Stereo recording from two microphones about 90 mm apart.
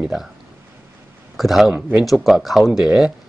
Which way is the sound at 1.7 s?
15° right (ahead or behind).